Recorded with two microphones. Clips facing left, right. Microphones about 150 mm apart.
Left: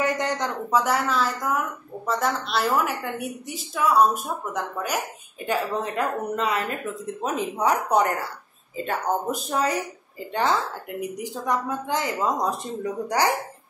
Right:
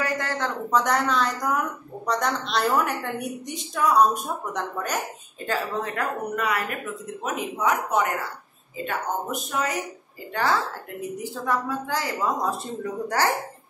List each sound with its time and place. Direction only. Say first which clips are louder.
0.0 s a woman's voice: left 2 dB; 20° left (ahead or behind)
5.5 s a woman's voice: left 2 dB; 20° left (ahead or behind)
7.3 s speech: left 1 dB; 35° left (ahead or behind)
10.3 s a woman's voice: left 1 dB; 20° left (ahead or behind)